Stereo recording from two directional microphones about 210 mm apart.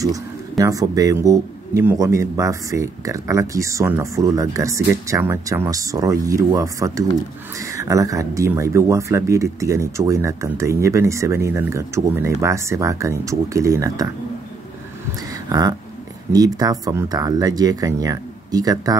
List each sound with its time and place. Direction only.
0.0 s speech: 15° right (ahead or behind)
16.3 s speech: 15° right (ahead or behind)